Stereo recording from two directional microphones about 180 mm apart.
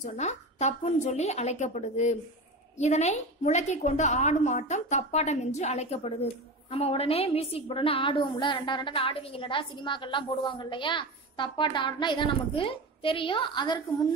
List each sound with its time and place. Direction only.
0.0 s a woman's voice: 40° left (ahead or behind); by 14.0 s 25° left (ahead or behind)